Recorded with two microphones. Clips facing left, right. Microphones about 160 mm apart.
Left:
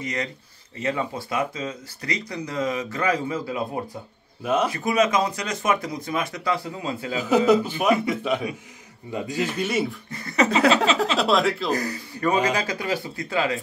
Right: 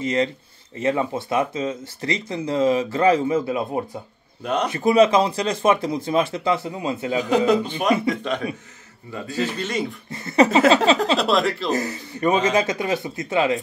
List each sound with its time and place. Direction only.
0.0 s speech: 25° right (ahead or behind)
7.2 s a man's voice: 5° left (ahead or behind)
10.1 s speech: 30° right (ahead or behind)
11.1 s a man's voice: centre (ahead or behind)
11.7 s speech: 25° right (ahead or behind)